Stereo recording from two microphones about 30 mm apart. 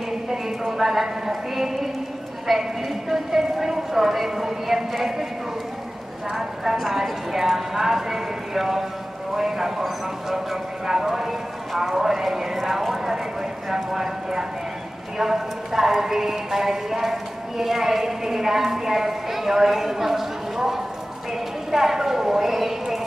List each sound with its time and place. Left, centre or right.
0.3 s a sound: centre
0.7 s a woman's voice: centre
6.3 s speech: centre